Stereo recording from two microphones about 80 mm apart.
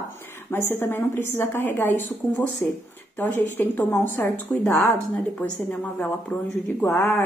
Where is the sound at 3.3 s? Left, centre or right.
Left.